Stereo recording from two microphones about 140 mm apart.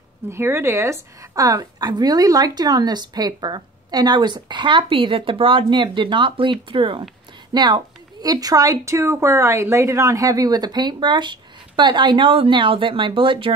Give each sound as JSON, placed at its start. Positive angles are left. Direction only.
{"t": 0.3, "sound": "a woman's voice", "side_deg": -15}